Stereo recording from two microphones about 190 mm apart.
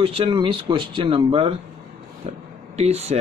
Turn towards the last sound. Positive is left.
turn(degrees=-35)  # may be behind; listen again after turning